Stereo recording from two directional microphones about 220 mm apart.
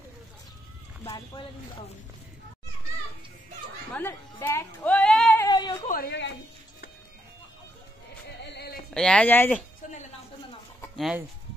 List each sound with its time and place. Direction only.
1.0 s speech: 15° left (ahead or behind)
3.9 s music: 10° left (ahead or behind)
5.5 s a sound: 20° left (ahead or behind)
5.9 s a woman's voice: 45° left (ahead or behind)
8.5 s a sound: 45° left (ahead or behind)
8.9 s speech: 5° left (ahead or behind)
11.0 s speech: 5° right (ahead or behind)